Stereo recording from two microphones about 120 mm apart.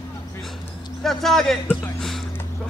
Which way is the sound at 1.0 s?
5° left (ahead or behind).